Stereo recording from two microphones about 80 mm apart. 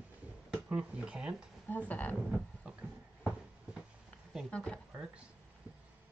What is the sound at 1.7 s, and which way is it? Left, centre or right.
Speech, centre.